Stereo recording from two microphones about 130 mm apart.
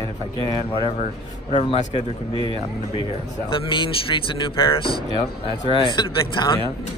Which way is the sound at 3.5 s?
40° left (ahead or behind).